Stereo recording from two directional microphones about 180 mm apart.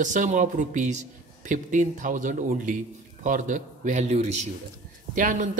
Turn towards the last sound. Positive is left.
turn(degrees=-45)  # may be behind; listen again after turning